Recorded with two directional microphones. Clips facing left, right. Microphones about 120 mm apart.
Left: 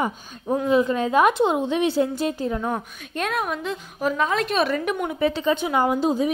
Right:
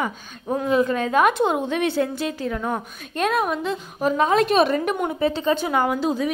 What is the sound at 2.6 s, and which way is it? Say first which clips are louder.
Speech: even; centre (ahead or behind).